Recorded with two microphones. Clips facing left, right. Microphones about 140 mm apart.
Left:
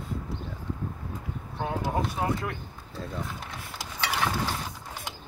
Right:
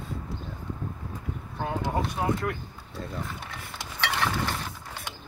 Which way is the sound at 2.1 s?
Centre (ahead or behind).